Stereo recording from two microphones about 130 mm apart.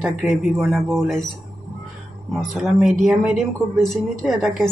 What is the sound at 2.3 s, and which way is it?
A woman's voice, centre (ahead or behind).